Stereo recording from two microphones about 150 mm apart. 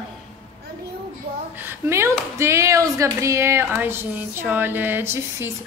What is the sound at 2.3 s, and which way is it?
Speech, 20° right (ahead or behind).